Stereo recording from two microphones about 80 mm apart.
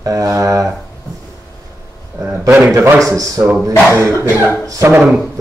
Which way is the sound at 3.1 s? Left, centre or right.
Right.